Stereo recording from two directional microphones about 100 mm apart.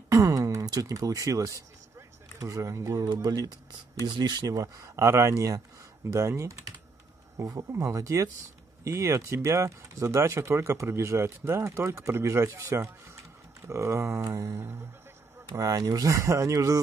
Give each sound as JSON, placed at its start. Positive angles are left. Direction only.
{"t": 0.1, "sound": "a sound", "side_deg": -35}
{"t": 3.1, "sound": "speech", "side_deg": -40}
{"t": 4.6, "sound": "speech", "side_deg": -30}